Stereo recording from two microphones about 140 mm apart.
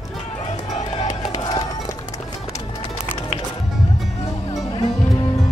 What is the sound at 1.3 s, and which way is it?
Run, 40° left (ahead or behind).